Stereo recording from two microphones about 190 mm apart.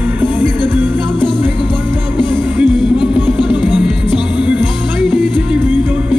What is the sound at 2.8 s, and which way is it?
Music, 5° right (ahead or behind).